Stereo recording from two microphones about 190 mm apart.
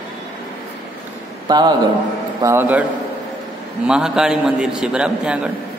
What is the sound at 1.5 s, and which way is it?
Speech, 20° right (ahead or behind).